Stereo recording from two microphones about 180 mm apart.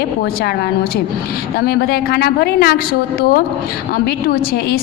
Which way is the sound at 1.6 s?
60° left (ahead or behind).